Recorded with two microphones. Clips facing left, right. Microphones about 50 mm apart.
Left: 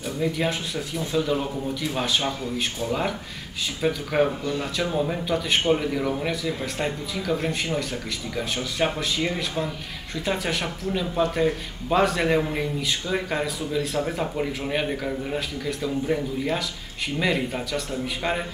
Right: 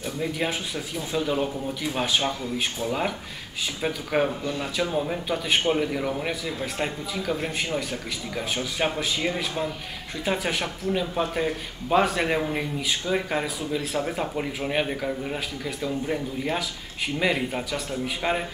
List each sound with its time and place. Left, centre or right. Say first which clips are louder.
0.2 s a man's voice: left 3 dB; centre